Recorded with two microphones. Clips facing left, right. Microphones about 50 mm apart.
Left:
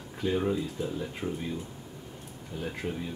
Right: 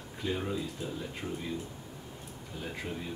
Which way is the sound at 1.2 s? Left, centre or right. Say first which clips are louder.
Left 5 dB; left.